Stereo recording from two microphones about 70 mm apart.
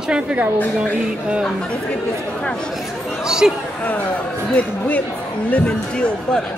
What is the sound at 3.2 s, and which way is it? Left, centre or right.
Speech, centre.